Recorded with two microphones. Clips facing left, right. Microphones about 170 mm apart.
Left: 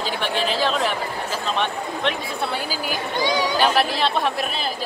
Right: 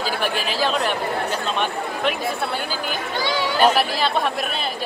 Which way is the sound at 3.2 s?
15° left (ahead or behind).